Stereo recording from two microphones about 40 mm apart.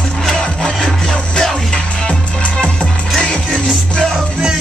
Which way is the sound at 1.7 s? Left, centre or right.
Left.